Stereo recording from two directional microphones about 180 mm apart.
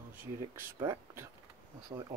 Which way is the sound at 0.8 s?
15° right (ahead or behind).